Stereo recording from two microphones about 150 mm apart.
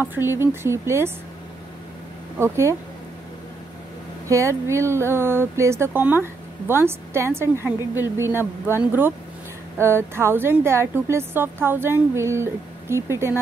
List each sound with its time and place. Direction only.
0.0 s speech: 15° right (ahead or behind)
2.3 s speech: 15° right (ahead or behind)
4.3 s speech: 20° right (ahead or behind)